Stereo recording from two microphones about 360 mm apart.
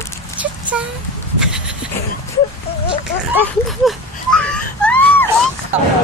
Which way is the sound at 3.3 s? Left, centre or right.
Centre.